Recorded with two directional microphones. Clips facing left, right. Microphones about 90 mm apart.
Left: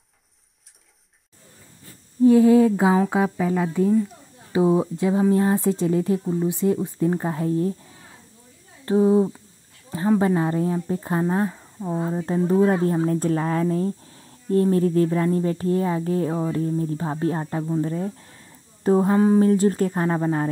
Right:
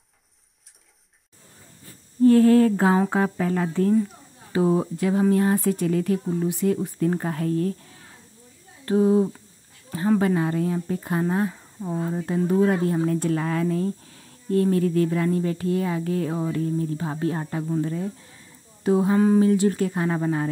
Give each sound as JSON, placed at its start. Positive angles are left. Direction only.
{"t": 2.2, "sound": "speech", "side_deg": 15}
{"t": 8.8, "sound": "a woman's voice", "side_deg": 25}
{"t": 19.1, "sound": "speech", "side_deg": 25}
{"t": 19.4, "sound": "a woman's voice", "side_deg": 40}
{"t": 20.1, "sound": "speech", "side_deg": 25}